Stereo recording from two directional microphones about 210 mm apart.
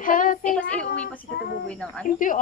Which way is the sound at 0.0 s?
40° left (ahead or behind).